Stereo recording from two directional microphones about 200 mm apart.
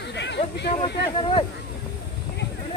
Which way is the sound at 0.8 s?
25° left (ahead or behind).